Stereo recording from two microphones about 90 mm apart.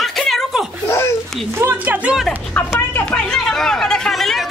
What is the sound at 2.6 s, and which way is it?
Speech, 15° left (ahead or behind).